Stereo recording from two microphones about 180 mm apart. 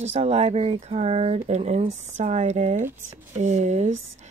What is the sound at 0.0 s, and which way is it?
Speech, 35° right (ahead or behind).